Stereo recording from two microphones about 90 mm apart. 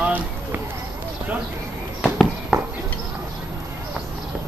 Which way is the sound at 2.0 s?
10° right (ahead or behind).